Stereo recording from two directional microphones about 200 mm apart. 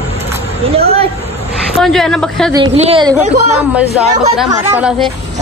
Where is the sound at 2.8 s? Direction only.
30° right (ahead or behind).